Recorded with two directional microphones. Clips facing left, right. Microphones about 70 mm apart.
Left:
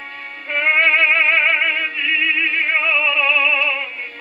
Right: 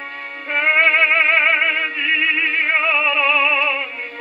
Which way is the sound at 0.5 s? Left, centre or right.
Right.